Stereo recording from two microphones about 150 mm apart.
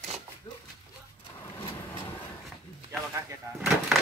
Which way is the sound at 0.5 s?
30° left (ahead or behind).